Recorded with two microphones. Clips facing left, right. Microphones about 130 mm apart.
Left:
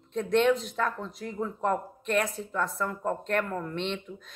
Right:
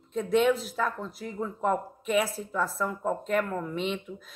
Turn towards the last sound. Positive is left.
turn(degrees=-5)  # may be behind; listen again after turning